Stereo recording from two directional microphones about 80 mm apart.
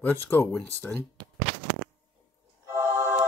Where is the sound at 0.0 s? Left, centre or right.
Left.